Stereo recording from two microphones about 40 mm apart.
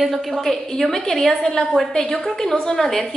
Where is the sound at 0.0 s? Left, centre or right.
Centre.